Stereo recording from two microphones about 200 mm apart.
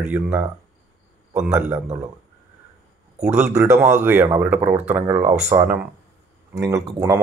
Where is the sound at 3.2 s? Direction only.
5° right (ahead or behind).